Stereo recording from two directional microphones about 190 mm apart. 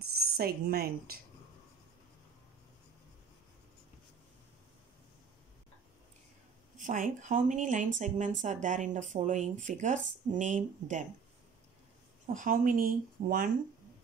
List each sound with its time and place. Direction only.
0.0 s speech: 55° right (ahead or behind)
6.8 s speech: 45° right (ahead or behind)
12.4 s speech: 45° right (ahead or behind)